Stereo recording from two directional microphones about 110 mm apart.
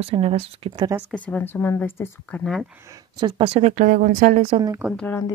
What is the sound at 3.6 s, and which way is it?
Speech, 85° right.